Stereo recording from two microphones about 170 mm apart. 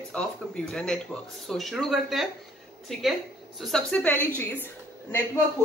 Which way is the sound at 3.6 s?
5° left (ahead or behind).